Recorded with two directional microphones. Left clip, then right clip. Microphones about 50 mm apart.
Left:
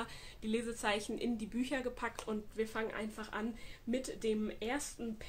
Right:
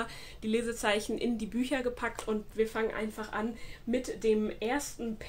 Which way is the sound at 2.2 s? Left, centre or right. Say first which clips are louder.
Right 8 dB; left.